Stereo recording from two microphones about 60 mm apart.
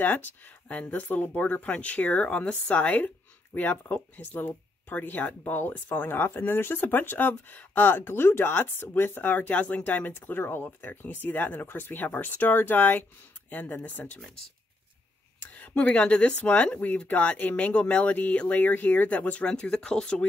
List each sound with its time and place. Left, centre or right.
0.0 s speech: left
15.5 s speech: left